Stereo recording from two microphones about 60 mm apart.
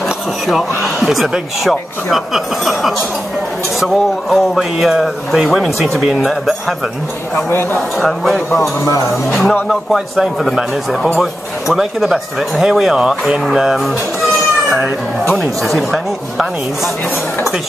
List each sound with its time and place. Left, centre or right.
0.5 s speech: centre
7.3 s speech: left
8.0 s speech: centre
8.5 s speech: left
9.3 s speech: centre
13.3 s music: centre
15.3 s speech: centre